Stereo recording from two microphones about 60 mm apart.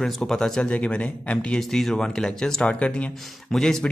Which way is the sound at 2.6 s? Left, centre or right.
Centre.